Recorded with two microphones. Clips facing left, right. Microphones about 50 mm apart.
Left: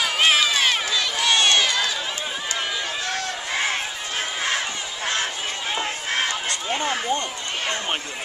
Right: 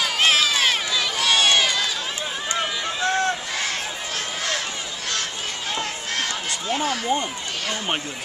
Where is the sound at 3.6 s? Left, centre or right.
Left.